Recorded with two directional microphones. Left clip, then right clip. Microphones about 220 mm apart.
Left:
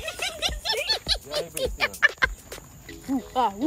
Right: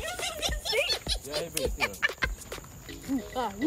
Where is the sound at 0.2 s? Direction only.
10° left (ahead or behind).